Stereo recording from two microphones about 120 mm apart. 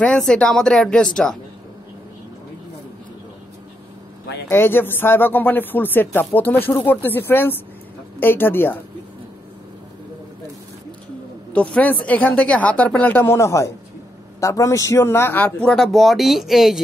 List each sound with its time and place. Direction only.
0.0 s speech: 10° left (ahead or behind)
4.5 s speech: 20° left (ahead or behind)
11.7 s speech: 10° left (ahead or behind)